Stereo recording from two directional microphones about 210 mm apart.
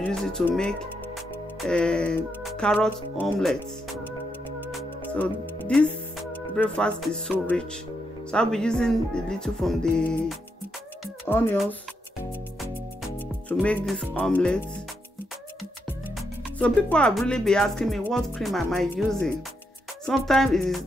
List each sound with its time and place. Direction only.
0.0 s speech: 5° left (ahead or behind)
4.6 s music: 5° left (ahead or behind)
6.3 s speech: 5° left (ahead or behind)
13.5 s speech: 5° left (ahead or behind)
16.2 s speech: 5° left (ahead or behind)